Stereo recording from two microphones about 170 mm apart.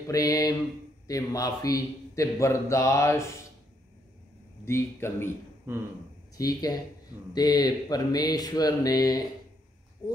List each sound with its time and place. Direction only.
0.0 s a man's voice: 20° left (ahead or behind)
4.6 s speech: 15° left (ahead or behind)
5.7 s speech: 15° right (ahead or behind)
6.3 s a man's voice: 20° left (ahead or behind)